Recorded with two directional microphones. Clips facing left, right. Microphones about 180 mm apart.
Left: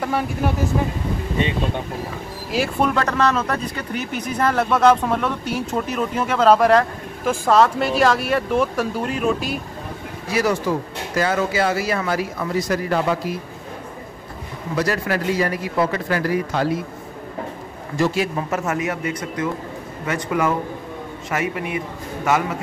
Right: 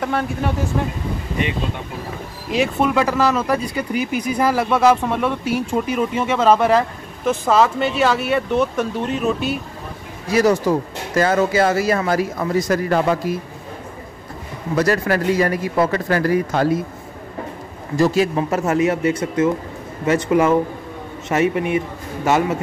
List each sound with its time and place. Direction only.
0.0 s speech: 5° left (ahead or behind)
2.5 s speech: centre (ahead or behind)
10.3 s a man's voice: 40° right (ahead or behind)
14.8 s a man's voice: 45° right (ahead or behind)
17.9 s speech: 40° right (ahead or behind)